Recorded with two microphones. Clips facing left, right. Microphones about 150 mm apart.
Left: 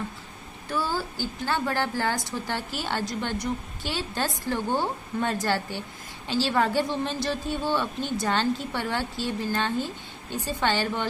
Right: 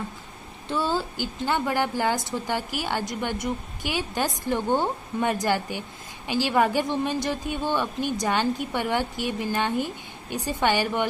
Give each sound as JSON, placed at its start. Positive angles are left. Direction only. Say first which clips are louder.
{"t": 0.7, "sound": "a woman's voice", "louder": "right 3 dB", "side_deg": -20}